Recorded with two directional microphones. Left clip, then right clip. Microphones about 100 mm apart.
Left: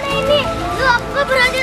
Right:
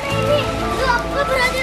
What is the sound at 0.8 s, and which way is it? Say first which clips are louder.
Speech: left 4 dB; 15° left (ahead or behind).